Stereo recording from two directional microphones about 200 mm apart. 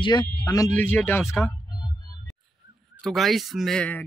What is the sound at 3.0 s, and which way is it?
Speech, centre (ahead or behind).